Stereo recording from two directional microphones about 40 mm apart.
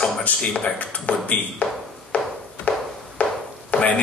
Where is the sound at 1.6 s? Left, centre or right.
Left.